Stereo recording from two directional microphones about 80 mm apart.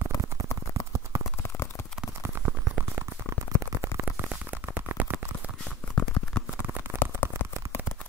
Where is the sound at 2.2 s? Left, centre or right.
Right.